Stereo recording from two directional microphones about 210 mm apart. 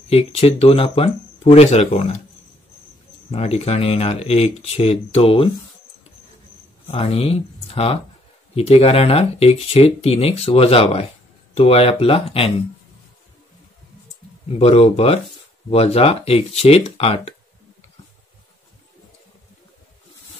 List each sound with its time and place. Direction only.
0.1 s speech: 30° left (ahead or behind)
3.3 s speech: 30° left (ahead or behind)
6.9 s speech: 25° left (ahead or behind)
14.6 s speech: 30° left (ahead or behind)